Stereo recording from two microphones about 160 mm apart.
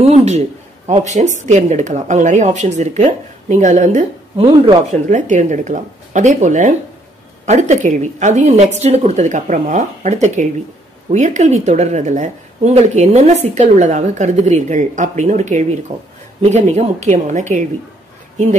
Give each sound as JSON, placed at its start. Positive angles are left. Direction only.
{"t": 0.0, "sound": "a man's voice", "side_deg": -40}
{"t": 4.4, "sound": "speech", "side_deg": -30}
{"t": 4.9, "sound": "a woman's voice", "side_deg": -50}